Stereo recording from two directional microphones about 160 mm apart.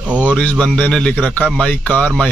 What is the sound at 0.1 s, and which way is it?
Speech, 10° right (ahead or behind).